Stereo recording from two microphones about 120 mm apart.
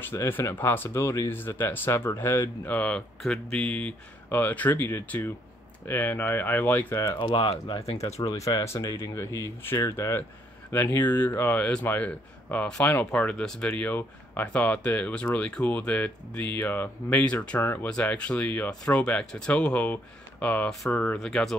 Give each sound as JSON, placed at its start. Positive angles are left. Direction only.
{"t": 0.0, "sound": "speech", "side_deg": 20}
{"t": 7.1, "sound": "speech", "side_deg": 40}
{"t": 8.2, "sound": "speech", "side_deg": 30}